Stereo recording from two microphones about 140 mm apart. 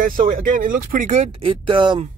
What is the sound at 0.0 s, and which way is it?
Speech, 75° right (ahead or behind).